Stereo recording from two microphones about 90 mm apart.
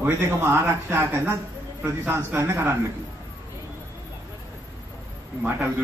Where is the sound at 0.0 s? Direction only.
25° right (ahead or behind).